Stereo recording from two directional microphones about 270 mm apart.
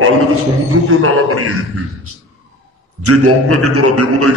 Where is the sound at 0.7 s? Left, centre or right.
Right.